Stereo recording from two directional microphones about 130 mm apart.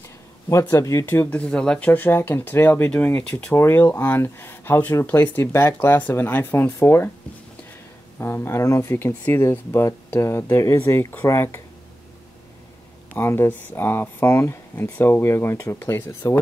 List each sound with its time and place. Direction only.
0.5 s speech: 20° left (ahead or behind); by 3.5 s 5° left (ahead or behind)
3.5 s speech: 20° left (ahead or behind)
8.2 s speech: 20° left (ahead or behind)
13.1 s speech: 20° left (ahead or behind)